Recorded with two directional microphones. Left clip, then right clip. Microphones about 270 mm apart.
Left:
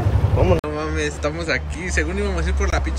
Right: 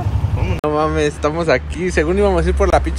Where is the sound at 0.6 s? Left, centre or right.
Centre.